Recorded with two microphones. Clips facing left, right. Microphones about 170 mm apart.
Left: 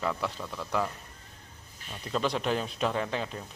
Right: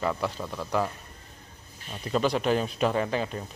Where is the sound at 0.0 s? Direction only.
5° right (ahead or behind).